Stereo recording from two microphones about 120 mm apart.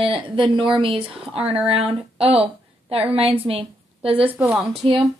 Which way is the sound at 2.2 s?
55° right (ahead or behind).